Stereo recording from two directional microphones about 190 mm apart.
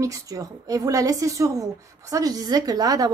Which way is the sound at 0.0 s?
20° right (ahead or behind).